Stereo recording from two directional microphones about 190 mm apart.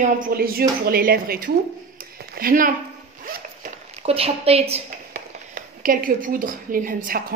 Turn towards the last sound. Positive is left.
turn(degrees=-45)  # may be behind; listen again after turning